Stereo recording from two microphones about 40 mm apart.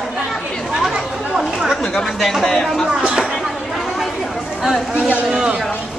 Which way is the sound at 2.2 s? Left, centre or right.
Centre.